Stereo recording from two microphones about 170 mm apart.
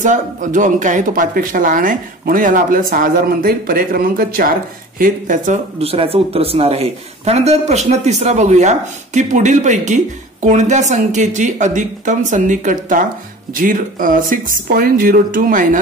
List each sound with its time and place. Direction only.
0.0 s speech: 50° right (ahead or behind)